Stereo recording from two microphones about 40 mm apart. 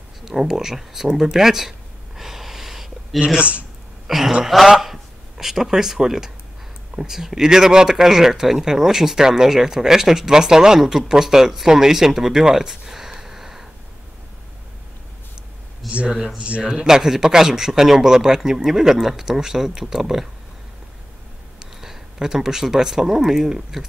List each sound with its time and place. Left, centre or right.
0.2 s speech: centre
1.1 s a sound: centre
3.3 s speech: right
4.1 s a man's voice: centre
15.8 s speech: centre
16.6 s speech: centre
21.5 s speech: centre